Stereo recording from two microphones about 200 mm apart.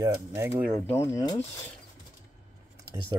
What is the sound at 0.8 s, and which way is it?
Speech, 15° left (ahead or behind).